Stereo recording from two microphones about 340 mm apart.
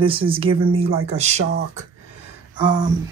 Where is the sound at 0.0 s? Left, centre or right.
Centre.